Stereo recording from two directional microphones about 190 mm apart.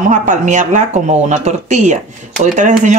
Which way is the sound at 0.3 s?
40° right (ahead or behind).